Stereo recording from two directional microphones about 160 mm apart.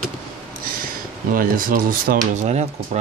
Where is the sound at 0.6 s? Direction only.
65° right (ahead or behind).